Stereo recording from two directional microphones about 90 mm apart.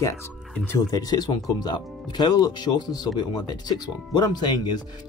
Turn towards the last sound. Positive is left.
turn(degrees=50)  # may be behind; listen again after turning